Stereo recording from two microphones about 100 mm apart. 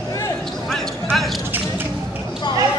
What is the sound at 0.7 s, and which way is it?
Basketball bounce, 5° left (ahead or behind).